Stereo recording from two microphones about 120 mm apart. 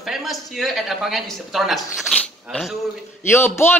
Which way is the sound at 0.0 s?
Centre (ahead or behind).